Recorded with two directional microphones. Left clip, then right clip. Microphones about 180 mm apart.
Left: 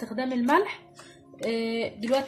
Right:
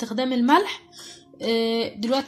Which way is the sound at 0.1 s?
30° right (ahead or behind).